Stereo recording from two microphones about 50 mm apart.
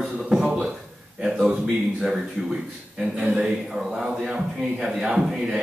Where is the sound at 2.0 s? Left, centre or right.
Centre.